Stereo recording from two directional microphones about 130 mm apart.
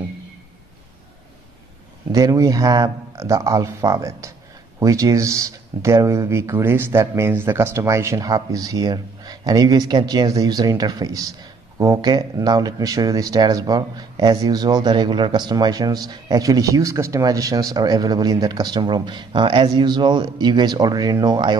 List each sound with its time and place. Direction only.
2.1 s speech: 25° right (ahead or behind)